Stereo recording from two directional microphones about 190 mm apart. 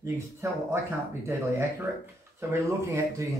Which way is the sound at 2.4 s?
15° right (ahead or behind).